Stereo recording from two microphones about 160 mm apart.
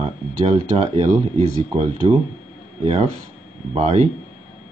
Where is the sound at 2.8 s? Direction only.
40° right (ahead or behind).